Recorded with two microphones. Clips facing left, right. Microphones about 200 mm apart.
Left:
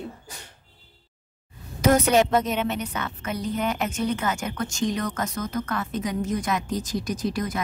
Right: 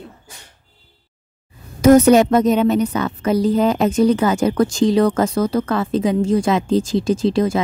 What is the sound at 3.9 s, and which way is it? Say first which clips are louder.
Speech: right 11 dB; 35° right (ahead or behind).